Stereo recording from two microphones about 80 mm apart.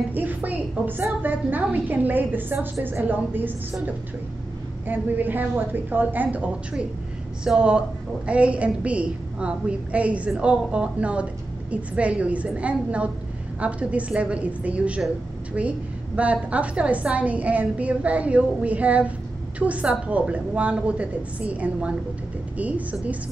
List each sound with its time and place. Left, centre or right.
0.1 s a sound: right
1.2 s a woman's voice: right
4.8 s a woman's voice: right